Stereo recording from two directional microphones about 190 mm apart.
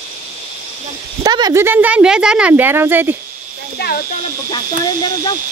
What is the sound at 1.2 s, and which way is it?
A woman's voice, 20° right (ahead or behind).